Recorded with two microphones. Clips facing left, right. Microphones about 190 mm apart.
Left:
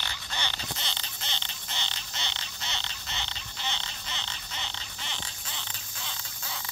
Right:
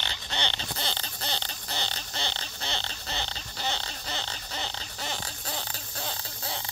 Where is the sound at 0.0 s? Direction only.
25° right (ahead or behind).